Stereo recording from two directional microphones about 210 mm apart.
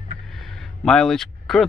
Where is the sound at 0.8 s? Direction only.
Centre (ahead or behind).